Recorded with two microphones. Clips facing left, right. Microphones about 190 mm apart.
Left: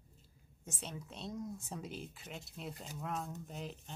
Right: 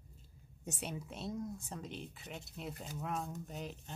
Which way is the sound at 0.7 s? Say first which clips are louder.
Right 2 dB; 10° right (ahead or behind).